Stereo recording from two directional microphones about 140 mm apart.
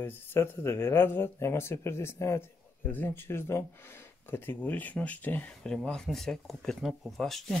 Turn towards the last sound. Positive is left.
turn(degrees=0)  # may be behind; listen again after turning